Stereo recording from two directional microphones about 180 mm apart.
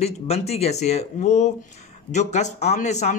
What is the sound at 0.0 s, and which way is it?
Speech, 35° left (ahead or behind).